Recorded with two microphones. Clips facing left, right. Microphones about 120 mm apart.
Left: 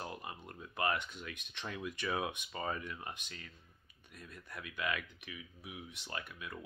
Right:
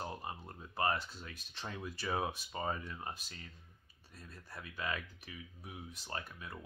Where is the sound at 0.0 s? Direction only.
30° right (ahead or behind).